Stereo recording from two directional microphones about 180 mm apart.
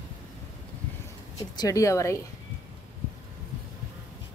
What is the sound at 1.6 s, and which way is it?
Speech, 20° left (ahead or behind).